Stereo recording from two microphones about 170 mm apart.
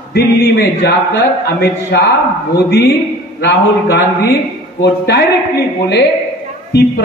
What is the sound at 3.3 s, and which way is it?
Speech, 75° left (ahead or behind).